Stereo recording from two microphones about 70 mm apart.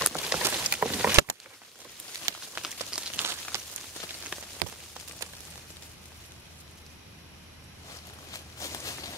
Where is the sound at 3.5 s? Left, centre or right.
Right.